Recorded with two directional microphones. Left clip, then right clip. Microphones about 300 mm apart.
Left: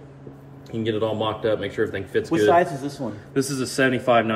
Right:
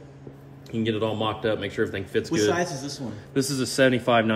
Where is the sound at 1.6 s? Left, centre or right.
Right.